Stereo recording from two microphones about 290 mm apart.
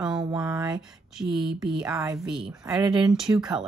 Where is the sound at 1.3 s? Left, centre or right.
Centre.